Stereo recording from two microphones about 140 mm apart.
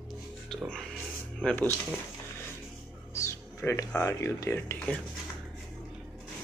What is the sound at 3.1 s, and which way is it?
Speech, 20° left (ahead or behind).